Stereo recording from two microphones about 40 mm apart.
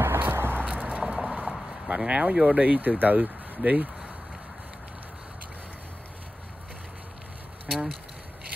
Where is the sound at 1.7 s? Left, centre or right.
Right.